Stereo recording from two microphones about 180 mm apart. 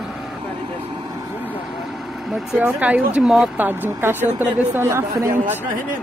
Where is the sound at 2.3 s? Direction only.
10° right (ahead or behind).